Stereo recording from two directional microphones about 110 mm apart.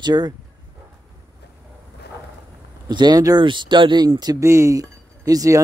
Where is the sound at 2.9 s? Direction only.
40° right (ahead or behind).